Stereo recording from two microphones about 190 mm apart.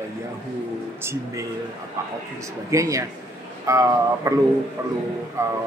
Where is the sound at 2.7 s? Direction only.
15° right (ahead or behind).